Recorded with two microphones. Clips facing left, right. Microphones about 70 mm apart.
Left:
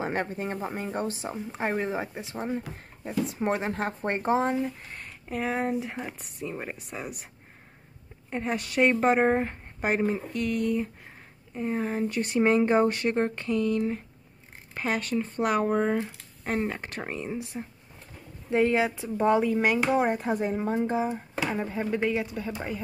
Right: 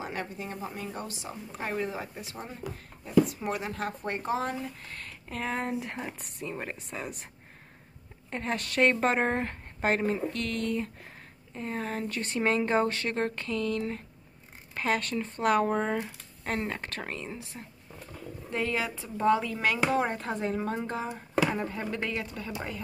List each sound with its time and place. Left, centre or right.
0.0 s a woman's voice: left; by 7.2 s centre
8.3 s speech: centre
16.5 s speech: centre
18.5 s speech: left